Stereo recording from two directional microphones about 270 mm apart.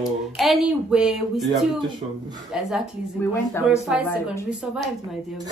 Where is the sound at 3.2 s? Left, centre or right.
Centre.